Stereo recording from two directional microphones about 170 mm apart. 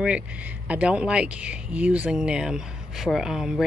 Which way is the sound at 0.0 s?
5° right (ahead or behind).